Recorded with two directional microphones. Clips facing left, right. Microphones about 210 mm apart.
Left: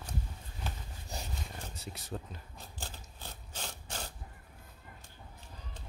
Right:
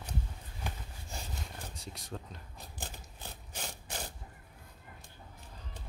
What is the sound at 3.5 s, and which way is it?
Wood, 15° right (ahead or behind).